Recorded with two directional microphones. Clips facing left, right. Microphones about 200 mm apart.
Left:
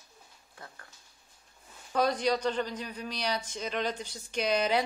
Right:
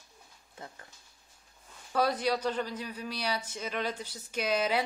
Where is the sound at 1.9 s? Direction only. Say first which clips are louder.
Left 1 dB; 5° right (ahead or behind).